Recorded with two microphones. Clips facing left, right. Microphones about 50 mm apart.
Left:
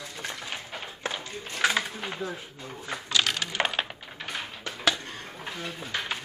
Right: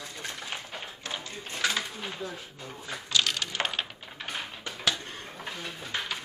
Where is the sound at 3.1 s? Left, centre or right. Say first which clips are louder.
Left 1 dB; centre.